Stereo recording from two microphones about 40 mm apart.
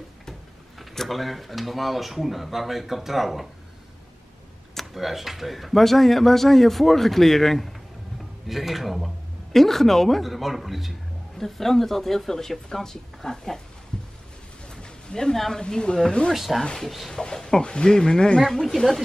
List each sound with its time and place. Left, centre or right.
0.3 s speech: centre
4.7 s speech: centre
14.7 s a sound: left
15.3 s speech: centre
15.6 s speech: left
16.3 s speech: centre
17.1 s speech: centre
18.4 s speech: centre